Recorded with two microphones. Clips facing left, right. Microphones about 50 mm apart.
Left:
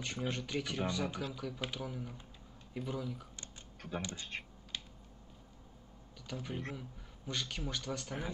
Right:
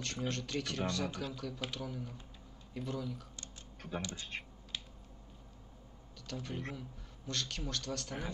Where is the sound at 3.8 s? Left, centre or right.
Centre.